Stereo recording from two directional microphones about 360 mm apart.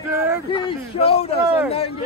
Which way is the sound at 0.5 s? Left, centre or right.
Centre.